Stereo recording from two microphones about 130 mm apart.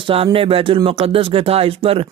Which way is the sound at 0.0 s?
45° right (ahead or behind).